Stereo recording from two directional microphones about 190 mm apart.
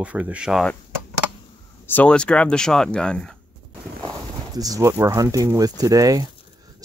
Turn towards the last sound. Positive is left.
turn(degrees=-20)  # may be behind; listen again after turning